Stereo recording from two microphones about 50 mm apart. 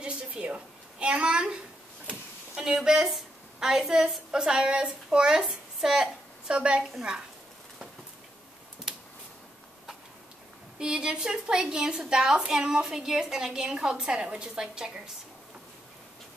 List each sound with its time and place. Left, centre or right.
0.0 s a woman's voice: right
10.8 s a woman's voice: centre